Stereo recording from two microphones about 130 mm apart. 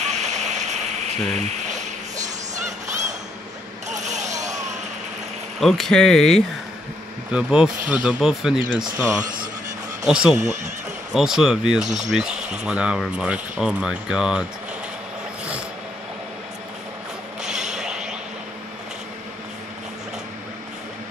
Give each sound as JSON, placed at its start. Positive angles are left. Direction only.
{"t": 0.0, "sound": "a sound", "side_deg": -60}
{"t": 3.9, "sound": "vehicle", "side_deg": -65}
{"t": 5.6, "sound": "speech", "side_deg": 0}
{"t": 9.0, "sound": "speech", "side_deg": -25}
{"t": 10.0, "sound": "speech", "side_deg": -10}
{"t": 10.3, "sound": "speech", "side_deg": -65}
{"t": 11.1, "sound": "speech", "side_deg": -5}
{"t": 17.4, "sound": "a sound", "side_deg": -5}